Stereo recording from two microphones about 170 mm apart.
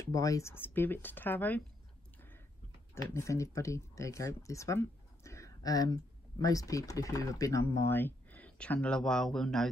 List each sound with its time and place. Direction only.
0.0 s speech: 20° left (ahead or behind)
2.9 s speech: 15° left (ahead or behind)